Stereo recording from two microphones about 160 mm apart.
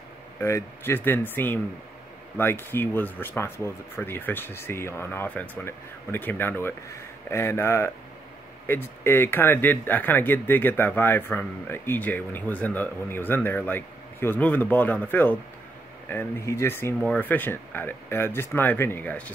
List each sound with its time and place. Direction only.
0.4 s speech: 15° left (ahead or behind)